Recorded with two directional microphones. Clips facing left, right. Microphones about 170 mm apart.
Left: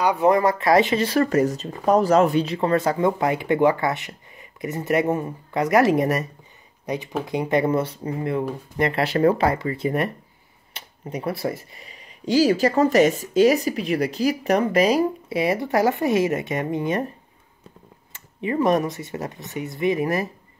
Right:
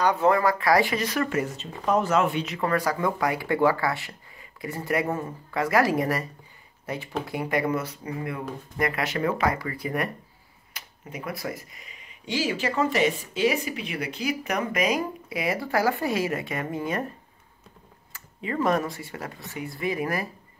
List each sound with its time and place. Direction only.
0.0 s speech: 15° left (ahead or behind)
18.1 s speech: 20° left (ahead or behind)